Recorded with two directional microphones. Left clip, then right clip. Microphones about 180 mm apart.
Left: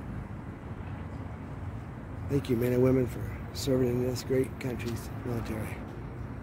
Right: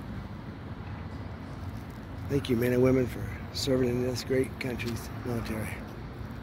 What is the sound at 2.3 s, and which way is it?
Speech, 10° left (ahead or behind).